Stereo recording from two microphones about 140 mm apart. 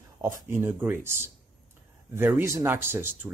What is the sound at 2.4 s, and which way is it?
Speech, 20° right (ahead or behind).